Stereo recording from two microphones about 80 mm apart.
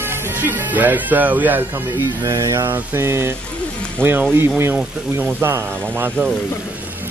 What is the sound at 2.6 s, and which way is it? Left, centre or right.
Mantra, right.